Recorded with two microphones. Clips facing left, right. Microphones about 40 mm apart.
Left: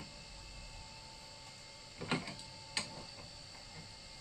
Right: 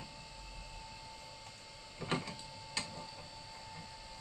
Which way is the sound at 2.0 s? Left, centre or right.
Centre.